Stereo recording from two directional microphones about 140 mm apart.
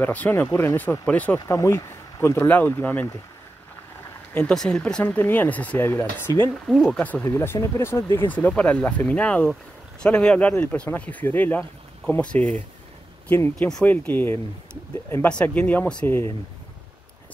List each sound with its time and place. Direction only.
0.0 s speech: 10° left (ahead or behind)
1.5 s speech: 20° left (ahead or behind)
4.3 s speech: 10° left (ahead or behind)
6.5 s speech: centre (ahead or behind)
13.6 s speech: 5° left (ahead or behind)